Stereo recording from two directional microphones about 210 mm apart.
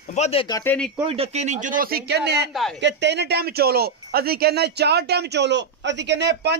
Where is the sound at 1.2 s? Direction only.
35° right (ahead or behind).